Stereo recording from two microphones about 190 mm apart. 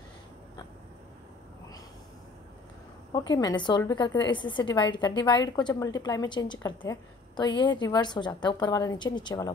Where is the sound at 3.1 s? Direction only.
20° left (ahead or behind).